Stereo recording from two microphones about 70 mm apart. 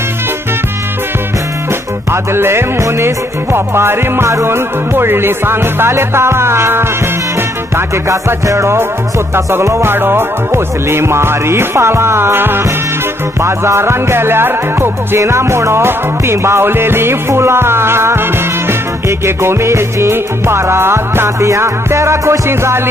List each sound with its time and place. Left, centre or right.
2.3 s music: right